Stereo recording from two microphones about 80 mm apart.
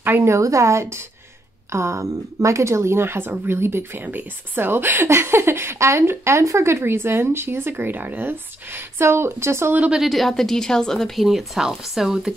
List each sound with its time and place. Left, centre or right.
0.0 s speech: right
9.9 s a woman's voice: centre